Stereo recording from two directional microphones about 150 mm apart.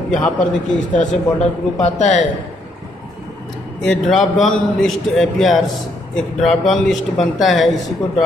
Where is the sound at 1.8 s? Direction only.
50° left (ahead or behind).